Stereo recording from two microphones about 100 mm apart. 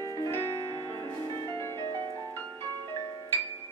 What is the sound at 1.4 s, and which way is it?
Music, 25° left (ahead or behind).